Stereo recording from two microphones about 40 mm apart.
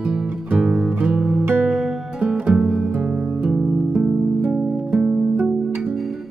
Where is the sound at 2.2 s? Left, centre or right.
Right.